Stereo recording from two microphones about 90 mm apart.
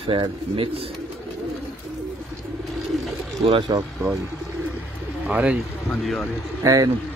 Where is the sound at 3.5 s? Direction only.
65° right (ahead or behind).